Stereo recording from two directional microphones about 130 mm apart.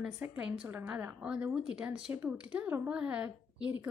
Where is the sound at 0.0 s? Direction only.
10° right (ahead or behind).